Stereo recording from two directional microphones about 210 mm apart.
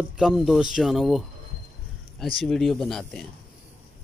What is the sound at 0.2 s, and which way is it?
Speech, 5° right (ahead or behind).